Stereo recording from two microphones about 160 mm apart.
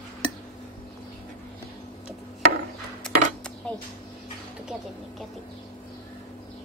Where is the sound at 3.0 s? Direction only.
5° left (ahead or behind).